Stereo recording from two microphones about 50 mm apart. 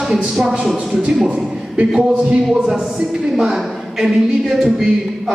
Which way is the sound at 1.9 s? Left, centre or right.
Centre.